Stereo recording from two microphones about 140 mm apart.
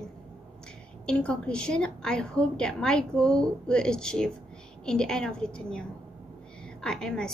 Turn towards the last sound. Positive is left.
turn(degrees=5)  # may be behind; listen again after turning